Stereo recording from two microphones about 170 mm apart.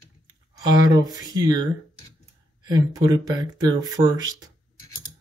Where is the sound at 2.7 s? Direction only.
20° right (ahead or behind).